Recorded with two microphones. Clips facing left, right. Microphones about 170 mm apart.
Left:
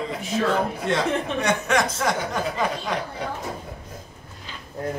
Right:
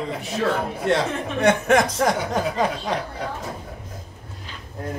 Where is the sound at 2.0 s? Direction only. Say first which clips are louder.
Right 3 dB; 35° right (ahead or behind).